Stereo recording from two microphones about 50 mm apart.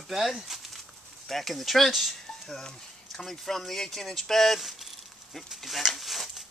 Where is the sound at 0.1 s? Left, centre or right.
Centre.